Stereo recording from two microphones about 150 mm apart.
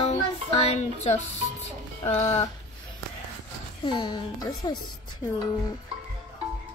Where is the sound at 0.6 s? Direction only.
50° left (ahead or behind).